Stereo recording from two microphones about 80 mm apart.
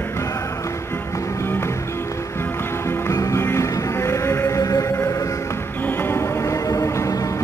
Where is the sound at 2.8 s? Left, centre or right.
Left.